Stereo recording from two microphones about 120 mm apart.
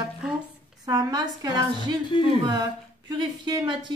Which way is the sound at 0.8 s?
30° right (ahead or behind).